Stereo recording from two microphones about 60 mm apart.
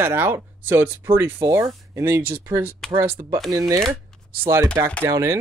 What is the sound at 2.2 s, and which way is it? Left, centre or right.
Speech, right.